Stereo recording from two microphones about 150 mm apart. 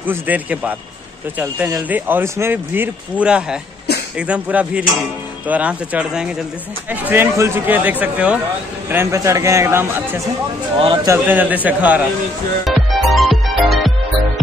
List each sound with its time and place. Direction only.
0.0 s speech: 10° right (ahead or behind)
12.6 s music: centre (ahead or behind)